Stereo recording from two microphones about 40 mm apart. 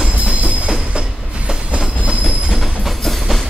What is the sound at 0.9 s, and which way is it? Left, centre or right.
Train, right.